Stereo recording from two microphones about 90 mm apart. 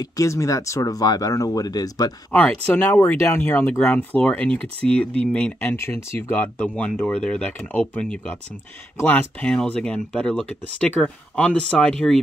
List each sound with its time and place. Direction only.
0.0 s speech: 35° left (ahead or behind)
2.3 s speech: 20° left (ahead or behind)
3.8 s speech: 15° left (ahead or behind)